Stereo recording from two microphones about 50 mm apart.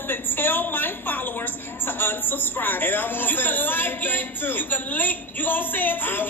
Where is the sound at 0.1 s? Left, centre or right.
Left.